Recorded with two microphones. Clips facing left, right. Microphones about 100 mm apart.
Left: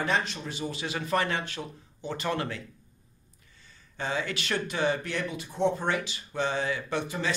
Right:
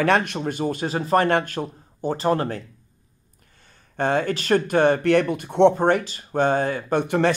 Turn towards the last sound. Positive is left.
turn(degrees=-55)  # may be behind; listen again after turning